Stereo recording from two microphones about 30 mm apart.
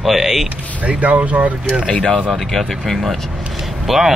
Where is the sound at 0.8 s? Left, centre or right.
Right.